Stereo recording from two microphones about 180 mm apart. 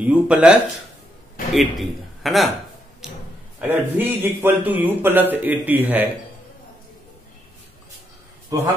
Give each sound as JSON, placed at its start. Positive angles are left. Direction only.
{"t": 0.0, "sound": "a man's voice", "side_deg": -5}
{"t": 3.6, "sound": "a man's voice", "side_deg": -10}
{"t": 8.5, "sound": "a man's voice", "side_deg": -20}